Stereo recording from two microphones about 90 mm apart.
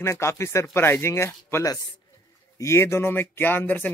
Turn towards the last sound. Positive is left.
turn(degrees=20)  # may be behind; listen again after turning